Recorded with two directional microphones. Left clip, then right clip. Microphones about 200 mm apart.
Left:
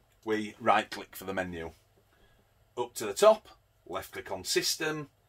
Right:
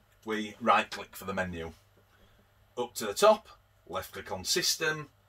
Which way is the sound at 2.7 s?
35° left (ahead or behind).